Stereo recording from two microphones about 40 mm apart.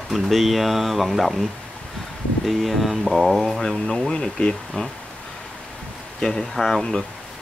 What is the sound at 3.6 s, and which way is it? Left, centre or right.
Speech, centre.